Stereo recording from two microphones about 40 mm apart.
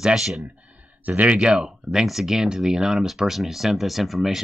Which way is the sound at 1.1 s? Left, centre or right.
Right.